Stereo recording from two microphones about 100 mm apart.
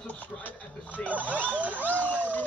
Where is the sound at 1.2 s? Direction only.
15° right (ahead or behind).